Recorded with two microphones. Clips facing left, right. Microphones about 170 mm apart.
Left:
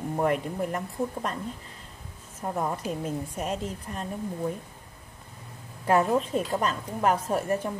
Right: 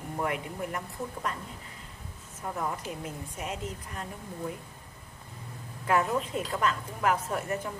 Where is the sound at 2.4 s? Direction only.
30° left (ahead or behind).